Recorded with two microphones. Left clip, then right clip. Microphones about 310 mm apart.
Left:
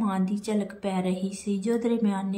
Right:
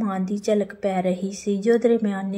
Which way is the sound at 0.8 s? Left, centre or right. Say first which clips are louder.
Right 5 dB; left.